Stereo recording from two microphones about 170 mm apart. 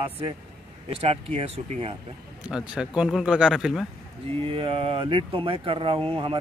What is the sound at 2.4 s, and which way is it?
Speech, 5° right (ahead or behind).